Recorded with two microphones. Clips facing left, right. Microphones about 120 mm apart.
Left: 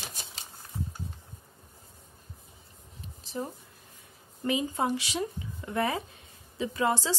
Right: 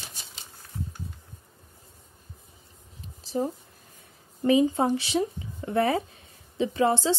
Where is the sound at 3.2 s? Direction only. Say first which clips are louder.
Right 7 dB; 35° right (ahead or behind).